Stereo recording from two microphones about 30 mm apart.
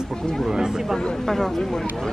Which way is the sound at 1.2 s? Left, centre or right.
Centre.